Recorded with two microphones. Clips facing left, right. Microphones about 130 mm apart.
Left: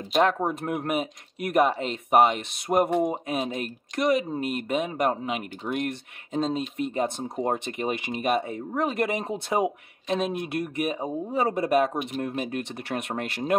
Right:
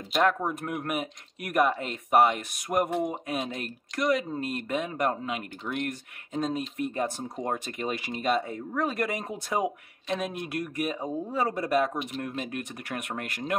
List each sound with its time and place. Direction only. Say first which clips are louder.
0.1 s speech: left 3 dB; 25° left (ahead or behind)